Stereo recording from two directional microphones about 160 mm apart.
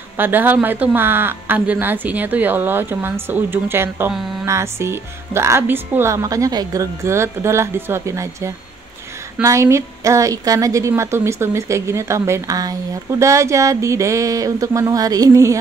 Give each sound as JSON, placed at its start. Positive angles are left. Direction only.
{"t": 0.2, "sound": "a woman's voice", "side_deg": -10}